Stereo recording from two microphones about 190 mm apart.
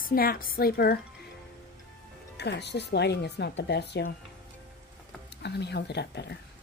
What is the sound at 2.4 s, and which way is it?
Speech, 60° left (ahead or behind).